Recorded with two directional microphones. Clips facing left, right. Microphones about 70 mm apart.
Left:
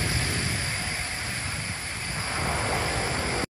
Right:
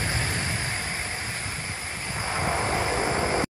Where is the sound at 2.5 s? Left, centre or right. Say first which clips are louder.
Right 2 dB; centre.